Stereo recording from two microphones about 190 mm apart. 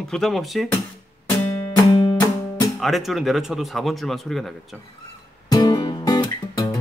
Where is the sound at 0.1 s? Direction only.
Centre (ahead or behind).